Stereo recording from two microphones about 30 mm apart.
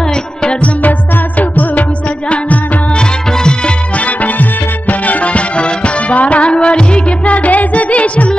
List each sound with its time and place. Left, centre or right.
0.1 s music: left
0.8 s music: left
2.9 s music: left
3.9 s music: left
4.4 s music: left
7.2 s music: left